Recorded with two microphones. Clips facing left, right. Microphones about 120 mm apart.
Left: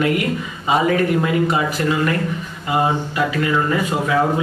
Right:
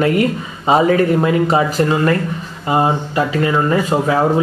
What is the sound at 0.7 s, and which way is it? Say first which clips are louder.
Speech: right 4 dB; 35° right (ahead or behind).